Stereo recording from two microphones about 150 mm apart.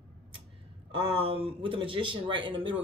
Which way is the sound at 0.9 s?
35° right (ahead or behind).